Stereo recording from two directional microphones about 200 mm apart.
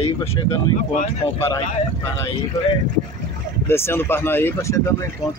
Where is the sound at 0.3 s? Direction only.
20° left (ahead or behind).